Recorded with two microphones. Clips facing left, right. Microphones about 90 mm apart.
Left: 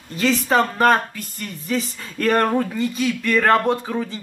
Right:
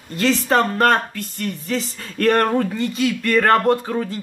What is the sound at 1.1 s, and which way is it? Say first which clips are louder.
Speech: right 6 dB; 65° right (ahead or behind).